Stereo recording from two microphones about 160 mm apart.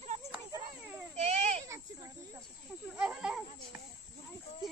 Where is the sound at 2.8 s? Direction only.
5° right (ahead or behind).